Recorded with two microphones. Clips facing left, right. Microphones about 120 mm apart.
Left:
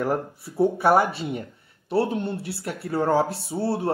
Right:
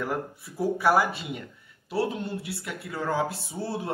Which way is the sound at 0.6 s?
30° left (ahead or behind).